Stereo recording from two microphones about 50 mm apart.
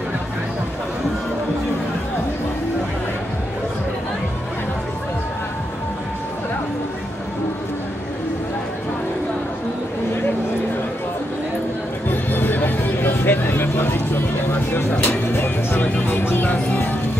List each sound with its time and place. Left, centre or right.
12.1 s music: left